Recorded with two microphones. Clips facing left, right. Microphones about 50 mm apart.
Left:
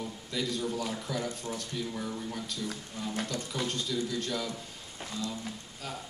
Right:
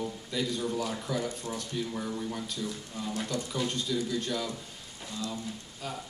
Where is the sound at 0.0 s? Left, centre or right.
Centre.